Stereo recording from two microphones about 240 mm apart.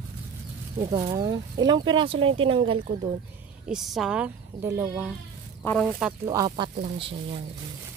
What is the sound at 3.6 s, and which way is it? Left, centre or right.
Speech, centre.